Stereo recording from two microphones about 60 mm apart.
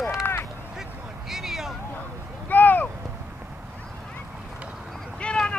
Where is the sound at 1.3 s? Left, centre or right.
Centre.